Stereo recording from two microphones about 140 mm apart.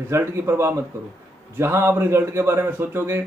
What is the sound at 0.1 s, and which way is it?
Speech, 20° right (ahead or behind).